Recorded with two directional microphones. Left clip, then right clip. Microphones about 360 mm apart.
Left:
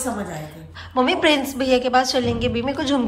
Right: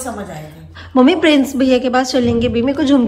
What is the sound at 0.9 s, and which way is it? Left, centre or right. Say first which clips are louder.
A woman's voice: right 6 dB; centre.